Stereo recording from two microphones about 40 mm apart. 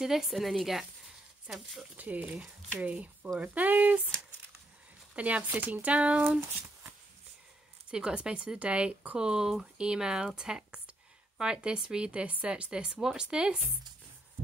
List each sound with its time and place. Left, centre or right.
0.0 s a woman's voice: centre
2.0 s speech: right
5.1 s speech: right
5.5 s speech: right
7.9 s speech: right